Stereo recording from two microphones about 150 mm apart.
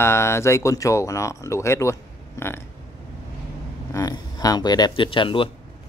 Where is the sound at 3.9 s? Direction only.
25° left (ahead or behind).